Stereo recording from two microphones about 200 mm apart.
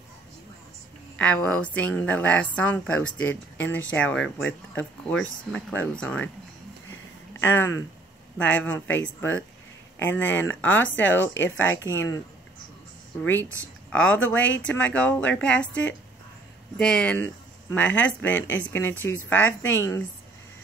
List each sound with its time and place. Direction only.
1.1 s speech: 5° left (ahead or behind)
7.3 s speech: 10° left (ahead or behind)
11.3 s speech: 75° left (ahead or behind)
13.2 s speech: 10° left (ahead or behind)